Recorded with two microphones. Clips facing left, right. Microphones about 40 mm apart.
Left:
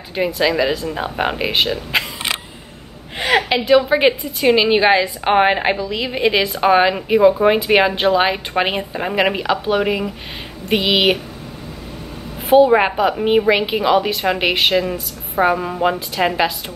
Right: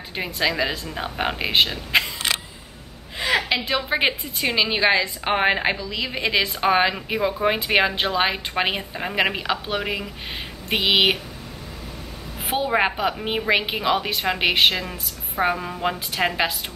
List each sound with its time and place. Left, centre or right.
0.1 s a woman's voice: centre
3.2 s a sound: left
3.6 s a woman's voice: centre
4.5 s a woman's voice: centre
10.7 s a woman's voice: centre
12.6 s a woman's voice: centre